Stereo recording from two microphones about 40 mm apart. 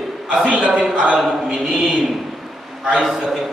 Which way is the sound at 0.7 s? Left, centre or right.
Right.